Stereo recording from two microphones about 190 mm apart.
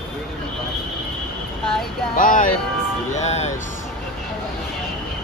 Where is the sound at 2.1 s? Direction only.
45° left (ahead or behind).